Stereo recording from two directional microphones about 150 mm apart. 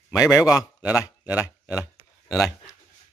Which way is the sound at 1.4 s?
20° left (ahead or behind).